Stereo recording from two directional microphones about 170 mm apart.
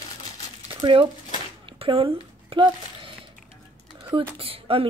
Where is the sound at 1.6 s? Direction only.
35° right (ahead or behind).